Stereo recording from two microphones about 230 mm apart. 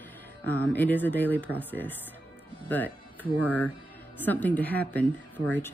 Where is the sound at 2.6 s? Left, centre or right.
Centre.